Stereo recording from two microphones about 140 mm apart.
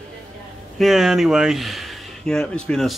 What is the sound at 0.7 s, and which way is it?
Speech, centre (ahead or behind).